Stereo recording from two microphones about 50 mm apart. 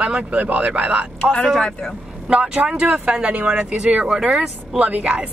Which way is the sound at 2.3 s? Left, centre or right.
Right.